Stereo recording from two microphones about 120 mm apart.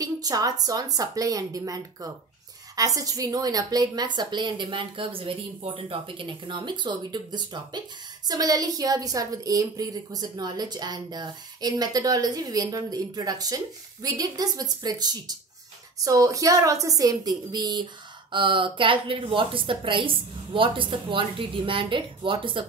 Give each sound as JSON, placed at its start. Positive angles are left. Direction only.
{"t": 0.0, "sound": "a woman's voice", "side_deg": -30}